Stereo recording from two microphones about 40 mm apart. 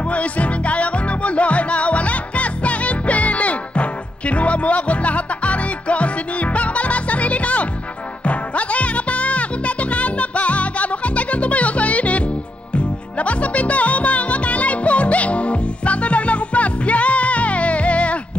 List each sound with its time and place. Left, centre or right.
0.1 s music: left